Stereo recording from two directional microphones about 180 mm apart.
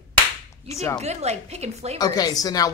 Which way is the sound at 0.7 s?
15° left (ahead or behind).